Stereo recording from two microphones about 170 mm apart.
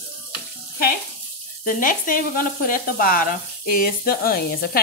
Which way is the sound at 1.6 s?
50° left (ahead or behind).